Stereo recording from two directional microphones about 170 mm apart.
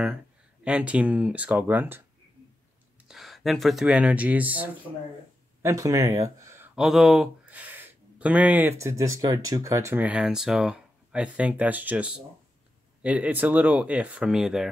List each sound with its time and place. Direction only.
0.7 s speech: 5° right (ahead or behind)
3.1 s speech: centre (ahead or behind)
6.7 s speech: centre (ahead or behind)